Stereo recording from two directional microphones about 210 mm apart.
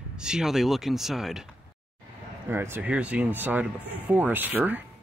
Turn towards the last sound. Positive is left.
turn(degrees=-10)  # may be behind; listen again after turning